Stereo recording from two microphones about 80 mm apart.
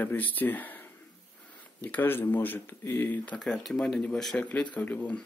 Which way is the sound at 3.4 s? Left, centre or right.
Centre.